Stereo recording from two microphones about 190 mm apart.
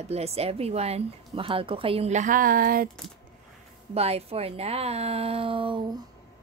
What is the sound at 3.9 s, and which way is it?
A woman's voice, 35° right (ahead or behind).